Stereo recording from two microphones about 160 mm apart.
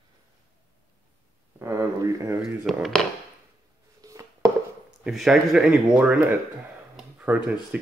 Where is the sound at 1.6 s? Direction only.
20° right (ahead or behind).